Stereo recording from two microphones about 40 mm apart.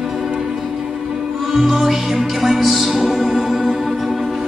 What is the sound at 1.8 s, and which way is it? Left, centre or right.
Music, centre.